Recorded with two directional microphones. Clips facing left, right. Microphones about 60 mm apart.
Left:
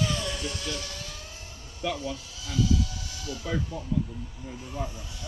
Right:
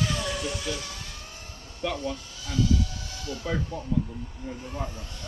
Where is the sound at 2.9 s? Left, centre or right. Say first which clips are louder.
Right 1 dB; right.